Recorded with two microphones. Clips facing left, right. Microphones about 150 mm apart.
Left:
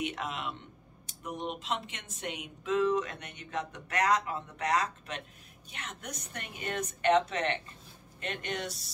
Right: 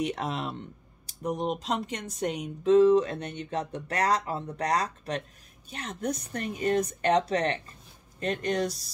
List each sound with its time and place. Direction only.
0.0 s speech: 35° right (ahead or behind)